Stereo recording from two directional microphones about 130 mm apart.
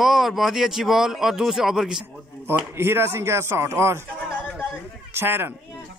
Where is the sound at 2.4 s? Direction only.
20° right (ahead or behind).